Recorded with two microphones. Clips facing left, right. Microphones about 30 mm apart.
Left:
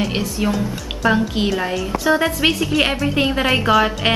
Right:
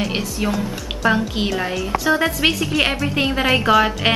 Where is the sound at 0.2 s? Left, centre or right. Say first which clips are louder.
Left 2 dB; centre.